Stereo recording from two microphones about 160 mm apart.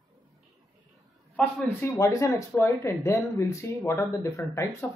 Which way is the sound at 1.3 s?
10° left (ahead or behind).